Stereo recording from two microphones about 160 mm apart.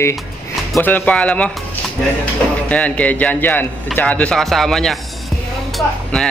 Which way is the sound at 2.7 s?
10° left (ahead or behind).